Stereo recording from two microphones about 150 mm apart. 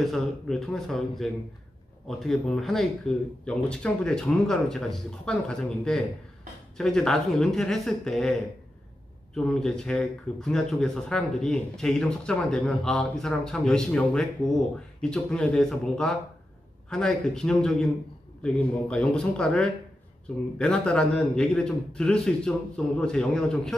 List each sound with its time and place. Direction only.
0.0 s speech: centre (ahead or behind)